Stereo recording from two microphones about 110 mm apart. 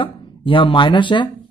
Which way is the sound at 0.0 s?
50° left (ahead or behind).